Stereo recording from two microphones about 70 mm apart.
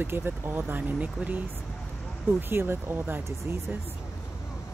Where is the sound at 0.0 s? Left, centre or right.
Right.